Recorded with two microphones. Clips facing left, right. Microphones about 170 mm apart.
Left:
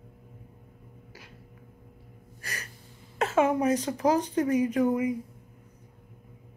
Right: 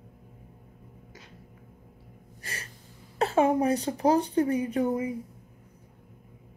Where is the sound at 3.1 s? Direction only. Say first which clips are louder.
Right 1 dB; 35° right (ahead or behind).